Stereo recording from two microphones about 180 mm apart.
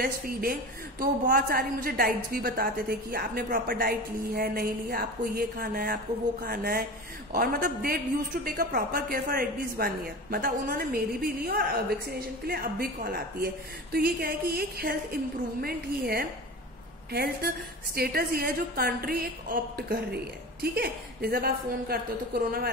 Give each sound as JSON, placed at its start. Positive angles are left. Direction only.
{"t": 0.0, "sound": "a woman's voice", "side_deg": -55}